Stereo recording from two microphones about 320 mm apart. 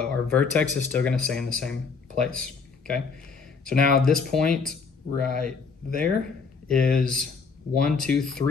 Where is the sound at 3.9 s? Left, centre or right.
Centre.